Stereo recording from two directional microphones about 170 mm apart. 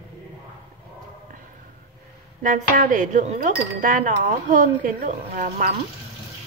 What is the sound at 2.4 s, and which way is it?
Speech, 50° right (ahead or behind).